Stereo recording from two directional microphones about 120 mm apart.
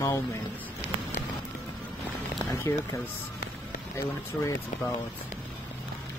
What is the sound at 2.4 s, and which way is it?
Speech, 25° left (ahead or behind).